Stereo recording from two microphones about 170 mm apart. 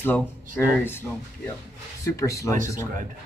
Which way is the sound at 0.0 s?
10° left (ahead or behind).